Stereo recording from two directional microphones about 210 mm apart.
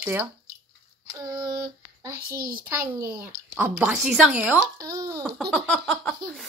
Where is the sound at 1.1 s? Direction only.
20° right (ahead or behind).